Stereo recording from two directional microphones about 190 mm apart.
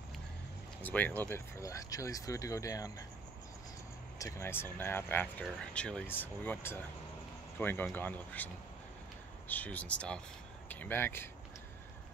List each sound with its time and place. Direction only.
0.8 s speech: 10° left (ahead or behind)
4.2 s speech: 10° left (ahead or behind)
9.5 s speech: 10° left (ahead or behind)